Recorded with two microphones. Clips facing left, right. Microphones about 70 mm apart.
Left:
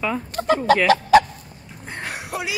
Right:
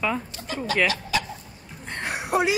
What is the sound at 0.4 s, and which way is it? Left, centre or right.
Speech, left.